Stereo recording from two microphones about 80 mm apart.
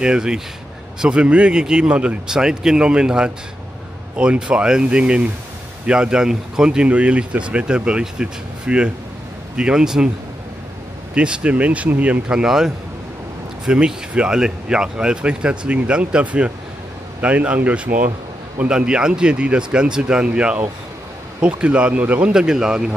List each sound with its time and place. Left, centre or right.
0.0 s speech: centre
11.1 s speech: centre
22.3 s speech: centre